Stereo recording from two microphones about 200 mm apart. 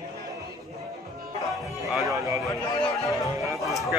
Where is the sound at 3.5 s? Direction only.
Centre (ahead or behind).